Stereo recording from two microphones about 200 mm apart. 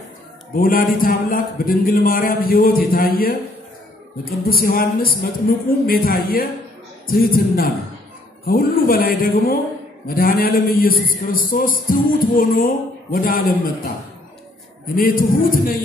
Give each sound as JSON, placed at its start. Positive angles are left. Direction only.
{"t": 0.6, "sound": "a man's voice", "side_deg": 45}
{"t": 15.0, "sound": "a man's voice", "side_deg": 45}